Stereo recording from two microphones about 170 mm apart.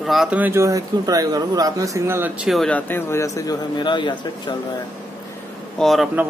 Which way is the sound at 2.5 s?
5° left (ahead or behind).